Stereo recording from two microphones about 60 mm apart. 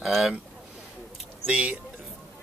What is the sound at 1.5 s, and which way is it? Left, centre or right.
Speech, centre.